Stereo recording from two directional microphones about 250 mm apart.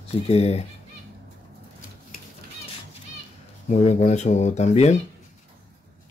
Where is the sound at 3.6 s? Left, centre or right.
Left.